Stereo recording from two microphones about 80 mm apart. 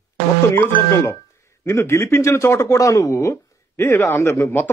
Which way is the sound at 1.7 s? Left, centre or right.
Left.